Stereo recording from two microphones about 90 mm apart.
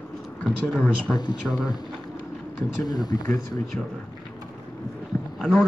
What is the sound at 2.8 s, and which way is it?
Speech, 45° left (ahead or behind).